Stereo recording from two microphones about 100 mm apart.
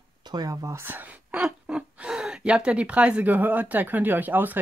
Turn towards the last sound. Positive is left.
turn(degrees=-20)  # may be behind; listen again after turning